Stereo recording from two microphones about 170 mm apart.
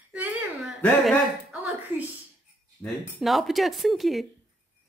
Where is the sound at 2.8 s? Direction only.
10° left (ahead or behind).